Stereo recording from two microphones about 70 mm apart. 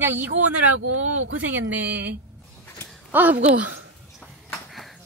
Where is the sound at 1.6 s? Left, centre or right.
Right.